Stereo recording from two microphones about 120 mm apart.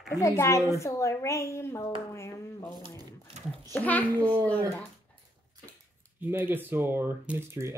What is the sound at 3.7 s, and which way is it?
Speech, 15° left (ahead or behind).